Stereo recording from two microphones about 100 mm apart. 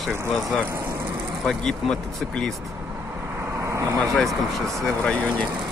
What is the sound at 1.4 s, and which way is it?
Speech, 5° left (ahead or behind).